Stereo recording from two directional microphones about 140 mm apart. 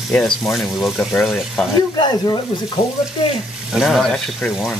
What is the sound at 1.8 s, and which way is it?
Speech, 30° left (ahead or behind).